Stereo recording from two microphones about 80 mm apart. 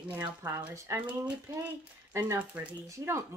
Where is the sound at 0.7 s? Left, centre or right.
Right.